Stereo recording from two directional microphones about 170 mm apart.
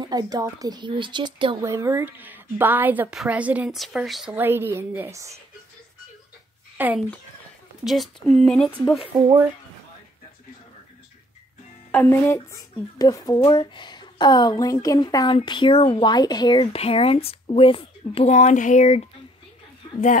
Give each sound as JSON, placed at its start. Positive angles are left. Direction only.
{"t": 0.0, "sound": "a woman's voice", "side_deg": -20}
{"t": 1.6, "sound": "a woman's voice", "side_deg": -15}
{"t": 6.8, "sound": "speech", "side_deg": -10}
{"t": 7.8, "sound": "speech", "side_deg": 0}
{"t": 11.9, "sound": "a woman's voice", "side_deg": 10}